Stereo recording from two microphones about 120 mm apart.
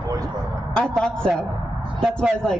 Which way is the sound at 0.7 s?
5° left (ahead or behind).